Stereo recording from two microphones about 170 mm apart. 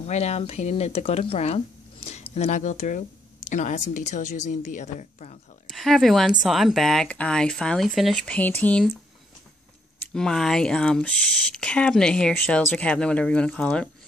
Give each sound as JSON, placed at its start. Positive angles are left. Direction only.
{"t": 0.0, "sound": "a woman's voice", "side_deg": 40}
{"t": 5.7, "sound": "speech", "side_deg": 0}
{"t": 9.9, "sound": "speech", "side_deg": 5}